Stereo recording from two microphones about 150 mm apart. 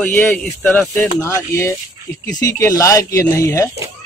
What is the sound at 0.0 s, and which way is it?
Speech, 10° left (ahead or behind).